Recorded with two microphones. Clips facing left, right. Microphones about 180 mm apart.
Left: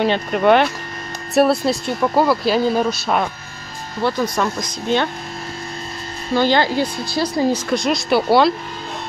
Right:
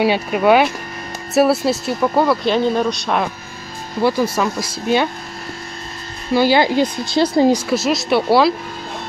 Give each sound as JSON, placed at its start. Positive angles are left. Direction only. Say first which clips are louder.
{"t": 0.0, "sound": "speech", "louder": "right 1 dB", "side_deg": -5}
{"t": 4.0, "sound": "speech", "louder": "right 3 dB", "side_deg": -5}
{"t": 6.3, "sound": "speech", "louder": "right 2 dB", "side_deg": -10}
{"t": 7.5, "sound": "speech", "louder": "right 2 dB", "side_deg": -5}